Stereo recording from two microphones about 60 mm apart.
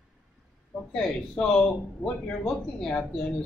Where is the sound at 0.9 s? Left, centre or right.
Centre.